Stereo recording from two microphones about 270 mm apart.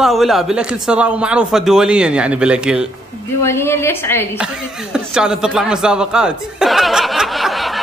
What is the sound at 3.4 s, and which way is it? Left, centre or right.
Speech, centre.